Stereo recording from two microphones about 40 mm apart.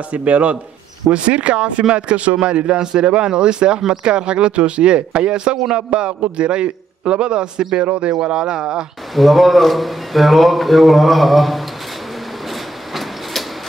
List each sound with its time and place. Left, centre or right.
0.1 s speech: right; by 8.8 s centre
9.1 s a man's voice: centre